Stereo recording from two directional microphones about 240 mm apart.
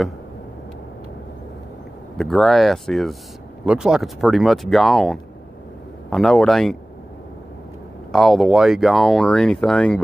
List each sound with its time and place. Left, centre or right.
2.1 s speech: centre
8.1 s speech: centre